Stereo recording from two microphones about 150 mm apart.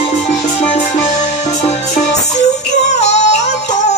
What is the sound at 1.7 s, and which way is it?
Music, 50° left (ahead or behind).